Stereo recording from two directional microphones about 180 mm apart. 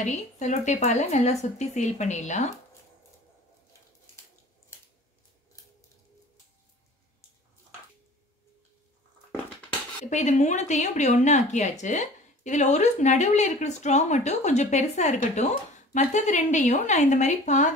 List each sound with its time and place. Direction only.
0.0 s speech: 40° left (ahead or behind)
10.0 s speech: 40° left (ahead or behind)